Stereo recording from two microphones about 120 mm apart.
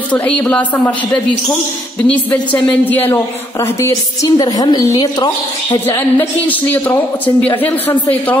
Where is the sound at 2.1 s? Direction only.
15° left (ahead or behind); by 5.8 s 35° left (ahead or behind).